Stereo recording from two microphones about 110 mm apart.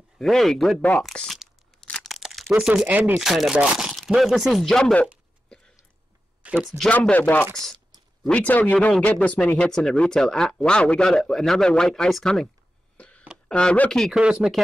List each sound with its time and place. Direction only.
0.2 s speech: 5° left (ahead or behind)
1.1 s crunch: centre (ahead or behind)
2.5 s speech: 5° right (ahead or behind)
3.2 s speech: 5° right (ahead or behind)
6.4 s speech: 15° right (ahead or behind)
6.9 s speech: 15° left (ahead or behind)
12.9 s a sound: 10° left (ahead or behind)
13.5 s speech: 10° left (ahead or behind)
14.1 s speech: 5° right (ahead or behind)